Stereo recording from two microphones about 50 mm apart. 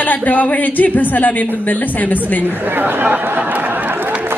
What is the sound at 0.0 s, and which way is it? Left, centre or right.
A woman's voice, left.